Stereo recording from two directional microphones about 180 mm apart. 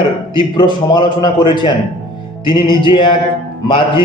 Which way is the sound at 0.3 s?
25° left (ahead or behind).